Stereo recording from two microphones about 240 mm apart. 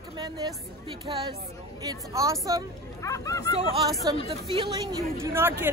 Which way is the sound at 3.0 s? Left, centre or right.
Centre.